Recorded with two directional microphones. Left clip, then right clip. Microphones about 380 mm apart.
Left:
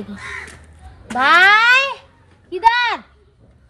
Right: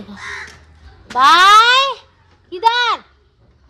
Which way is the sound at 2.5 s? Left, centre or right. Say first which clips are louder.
Left 1 dB; centre.